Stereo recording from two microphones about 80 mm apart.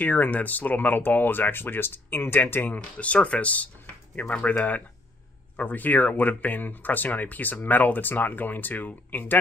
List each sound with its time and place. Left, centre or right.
0.0 s speech: centre